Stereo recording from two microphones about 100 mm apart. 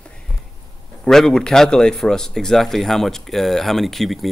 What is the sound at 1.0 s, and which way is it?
A man's voice, 5° left (ahead or behind).